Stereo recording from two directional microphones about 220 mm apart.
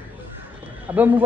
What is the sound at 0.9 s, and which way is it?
Speech, 10° right (ahead or behind).